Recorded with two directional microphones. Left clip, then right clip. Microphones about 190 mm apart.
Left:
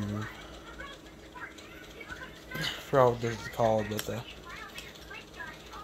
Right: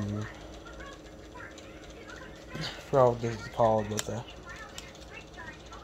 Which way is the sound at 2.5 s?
Centre (ahead or behind).